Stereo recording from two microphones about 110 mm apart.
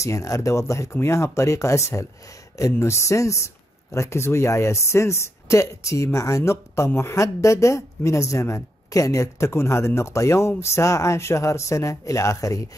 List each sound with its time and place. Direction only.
0.0 s speech: 30° left (ahead or behind)